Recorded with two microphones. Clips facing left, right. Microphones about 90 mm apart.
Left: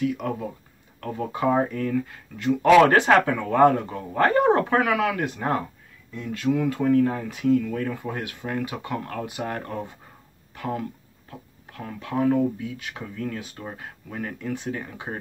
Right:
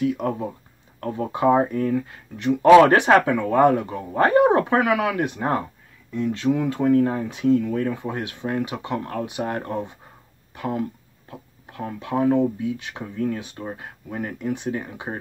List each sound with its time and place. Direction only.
0.0 s speech: 30° right (ahead or behind)